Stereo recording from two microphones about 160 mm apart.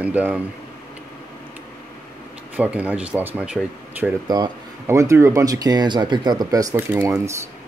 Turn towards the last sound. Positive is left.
turn(degrees=-15)  # may be behind; listen again after turning